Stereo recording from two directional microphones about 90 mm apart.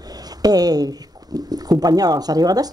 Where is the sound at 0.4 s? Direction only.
45° right (ahead or behind).